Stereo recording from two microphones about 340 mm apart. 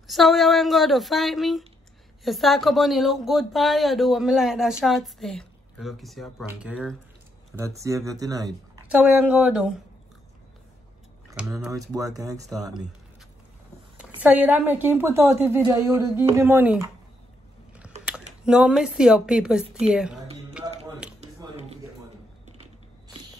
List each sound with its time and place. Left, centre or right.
0.0 s speech: centre
11.2 s a woman's voice: centre
13.9 s a woman's voice: centre
18.4 s speech: centre
21.2 s a sound: centre